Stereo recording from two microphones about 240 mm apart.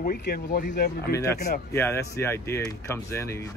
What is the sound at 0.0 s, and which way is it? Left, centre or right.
Speech, left.